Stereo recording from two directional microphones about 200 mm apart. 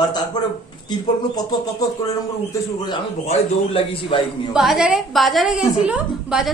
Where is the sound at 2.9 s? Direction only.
30° left (ahead or behind).